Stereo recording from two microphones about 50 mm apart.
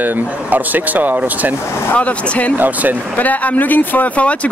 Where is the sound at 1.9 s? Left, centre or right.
Left.